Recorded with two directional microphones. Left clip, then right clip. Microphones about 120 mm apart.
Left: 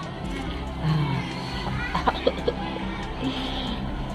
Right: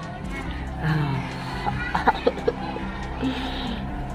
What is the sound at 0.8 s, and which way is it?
Speech, 55° right (ahead or behind).